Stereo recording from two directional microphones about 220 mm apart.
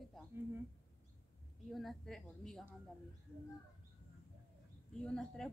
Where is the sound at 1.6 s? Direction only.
Centre (ahead or behind).